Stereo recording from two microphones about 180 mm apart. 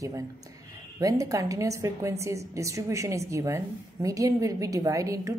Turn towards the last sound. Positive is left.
turn(degrees=-15)  # may be behind; listen again after turning